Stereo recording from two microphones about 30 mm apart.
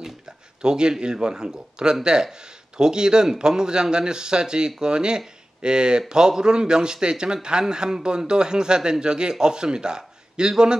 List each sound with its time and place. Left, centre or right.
0.6 s speech: right